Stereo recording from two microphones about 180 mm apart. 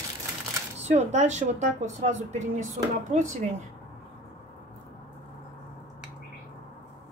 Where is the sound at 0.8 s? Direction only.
40° right (ahead or behind).